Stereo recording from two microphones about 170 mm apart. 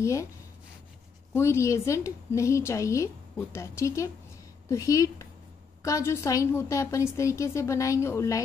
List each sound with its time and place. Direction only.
0.0 s a woman's voice: 20° left (ahead or behind)
1.3 s a woman's voice: 15° left (ahead or behind)